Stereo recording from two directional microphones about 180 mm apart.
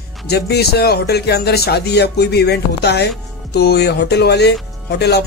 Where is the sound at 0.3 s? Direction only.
65° left (ahead or behind).